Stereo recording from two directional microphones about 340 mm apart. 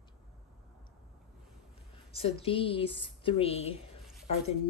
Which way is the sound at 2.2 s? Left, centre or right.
Centre.